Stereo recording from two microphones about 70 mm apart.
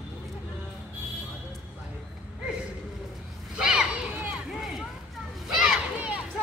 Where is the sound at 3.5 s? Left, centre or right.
Centre.